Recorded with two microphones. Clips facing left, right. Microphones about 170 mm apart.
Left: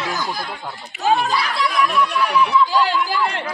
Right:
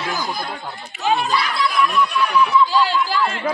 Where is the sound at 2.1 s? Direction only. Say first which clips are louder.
Even; 75° left (ahead or behind).